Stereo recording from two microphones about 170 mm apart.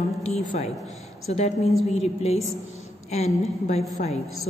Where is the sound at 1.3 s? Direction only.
40° left (ahead or behind).